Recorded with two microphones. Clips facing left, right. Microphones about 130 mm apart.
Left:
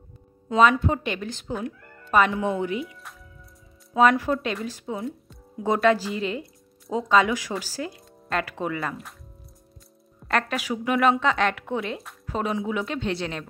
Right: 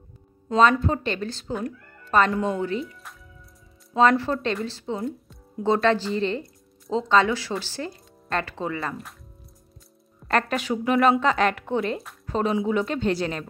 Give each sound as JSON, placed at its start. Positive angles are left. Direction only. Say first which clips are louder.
{"t": 0.5, "sound": "speech", "louder": "even", "side_deg": 10}
{"t": 1.5, "sound": "speech", "louder": "right 1 dB", "side_deg": 0}
{"t": 2.8, "sound": "a woman's voice", "louder": "even", "side_deg": 0}
{"t": 4.9, "sound": "speech", "louder": "right 2 dB", "side_deg": 0}
{"t": 8.7, "sound": "a woman's voice", "louder": "even", "side_deg": 0}
{"t": 10.2, "sound": "a woman's voice", "louder": "right 2 dB", "side_deg": 5}